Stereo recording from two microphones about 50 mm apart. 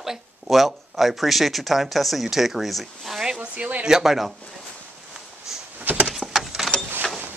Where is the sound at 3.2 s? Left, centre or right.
Centre.